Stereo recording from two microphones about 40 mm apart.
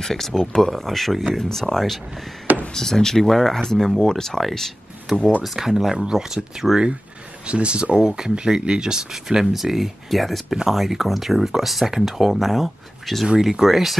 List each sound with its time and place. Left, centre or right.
0.0 s speech: centre
1.3 s speech: centre
7.4 s speech: right; by 13.9 s centre